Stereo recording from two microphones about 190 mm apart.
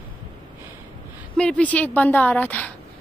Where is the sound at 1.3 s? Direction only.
5° left (ahead or behind).